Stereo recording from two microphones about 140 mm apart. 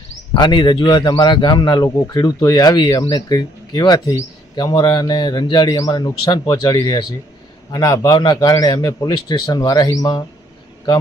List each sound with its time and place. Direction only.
0.3 s a man's voice: 35° left (ahead or behind)